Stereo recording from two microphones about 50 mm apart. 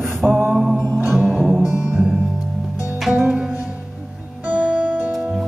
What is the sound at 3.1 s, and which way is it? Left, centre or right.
Music, centre.